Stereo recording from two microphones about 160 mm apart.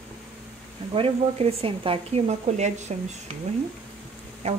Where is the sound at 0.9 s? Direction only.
35° right (ahead or behind).